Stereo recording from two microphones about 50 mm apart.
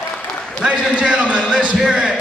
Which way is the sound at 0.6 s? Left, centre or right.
Right.